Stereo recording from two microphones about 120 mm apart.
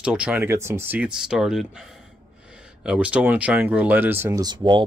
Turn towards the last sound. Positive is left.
turn(degrees=-40)  # may be behind; listen again after turning